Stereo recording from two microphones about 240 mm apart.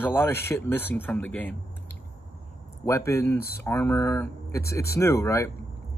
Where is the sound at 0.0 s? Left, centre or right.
Centre.